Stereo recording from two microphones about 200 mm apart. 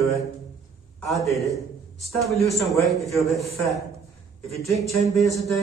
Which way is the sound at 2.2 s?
Centre (ahead or behind).